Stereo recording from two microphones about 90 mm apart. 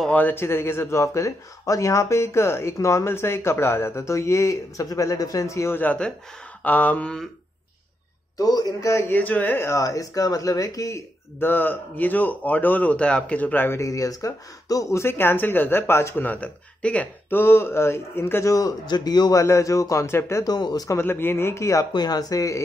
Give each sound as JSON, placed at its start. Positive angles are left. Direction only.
{"t": 0.1, "sound": "speech", "side_deg": 20}
{"t": 5.8, "sound": "speech", "side_deg": 15}
{"t": 8.4, "sound": "speech", "side_deg": 45}
{"t": 8.9, "sound": "speech", "side_deg": 25}
{"t": 13.7, "sound": "speech", "side_deg": 35}
{"t": 16.3, "sound": "speech", "side_deg": 15}
{"t": 19.4, "sound": "speech", "side_deg": 35}
{"t": 20.4, "sound": "speech", "side_deg": 50}
{"t": 21.0, "sound": "speech", "side_deg": 25}
{"t": 21.9, "sound": "speech", "side_deg": 50}